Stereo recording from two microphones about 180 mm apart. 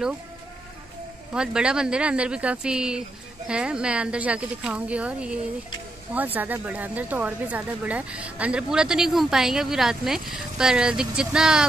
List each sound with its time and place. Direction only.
1.3 s speech: 5° right (ahead or behind)